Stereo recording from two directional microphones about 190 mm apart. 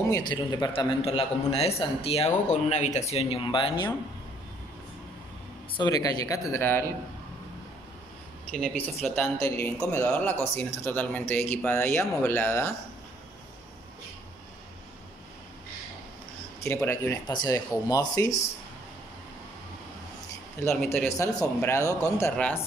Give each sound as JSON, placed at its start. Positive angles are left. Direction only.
{"t": 0.1, "sound": "a man's voice", "side_deg": 20}
{"t": 5.7, "sound": "speech", "side_deg": 20}
{"t": 8.5, "sound": "speech", "side_deg": 5}
{"t": 16.6, "sound": "a man's voice", "side_deg": 15}
{"t": 20.9, "sound": "speech", "side_deg": 15}